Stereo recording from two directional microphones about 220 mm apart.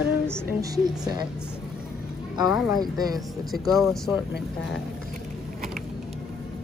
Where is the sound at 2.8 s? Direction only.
15° right (ahead or behind).